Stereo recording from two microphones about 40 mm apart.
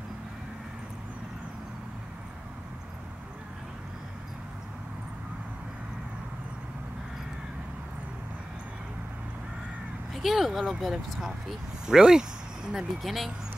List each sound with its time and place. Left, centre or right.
10.1 s speech: centre
11.9 s speech: centre
13.0 s speech: centre